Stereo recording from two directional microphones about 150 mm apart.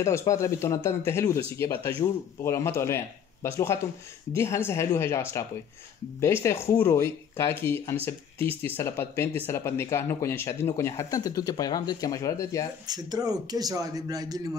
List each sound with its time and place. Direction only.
0.0 s speech: 20° left (ahead or behind)
12.8 s speech: 25° right (ahead or behind)